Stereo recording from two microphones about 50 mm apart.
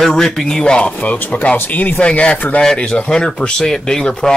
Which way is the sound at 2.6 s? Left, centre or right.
Centre.